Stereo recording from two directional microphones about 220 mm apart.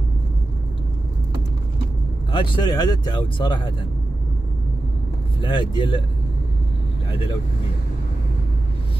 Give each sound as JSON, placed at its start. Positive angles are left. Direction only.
{"t": 2.3, "sound": "speech", "side_deg": 20}
{"t": 5.4, "sound": "speech", "side_deg": 20}
{"t": 7.1, "sound": "speech", "side_deg": 25}